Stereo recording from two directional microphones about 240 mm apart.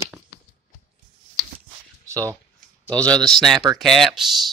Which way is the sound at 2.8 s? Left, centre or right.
Centre.